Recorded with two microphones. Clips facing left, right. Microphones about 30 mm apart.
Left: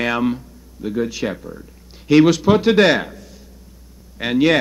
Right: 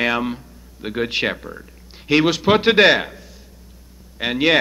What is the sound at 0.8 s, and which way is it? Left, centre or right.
Speech, right.